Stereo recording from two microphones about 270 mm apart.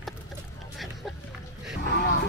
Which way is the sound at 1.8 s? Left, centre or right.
Left.